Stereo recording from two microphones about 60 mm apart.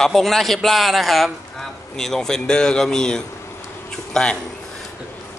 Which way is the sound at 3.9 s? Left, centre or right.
Centre.